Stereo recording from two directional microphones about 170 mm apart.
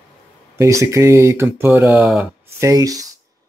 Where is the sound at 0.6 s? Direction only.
15° right (ahead or behind).